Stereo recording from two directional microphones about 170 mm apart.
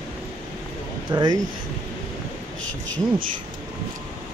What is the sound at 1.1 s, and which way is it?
Speech, 25° right (ahead or behind).